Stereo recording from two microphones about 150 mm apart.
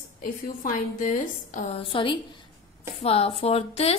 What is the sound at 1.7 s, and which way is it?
A woman's voice, 35° left (ahead or behind).